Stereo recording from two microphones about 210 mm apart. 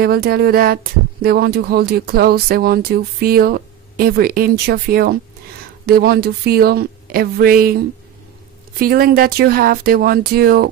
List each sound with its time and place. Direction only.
0.0 s speech: 45° right (ahead or behind)